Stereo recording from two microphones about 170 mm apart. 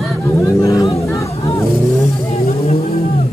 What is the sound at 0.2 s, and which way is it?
Vehicle, 15° left (ahead or behind).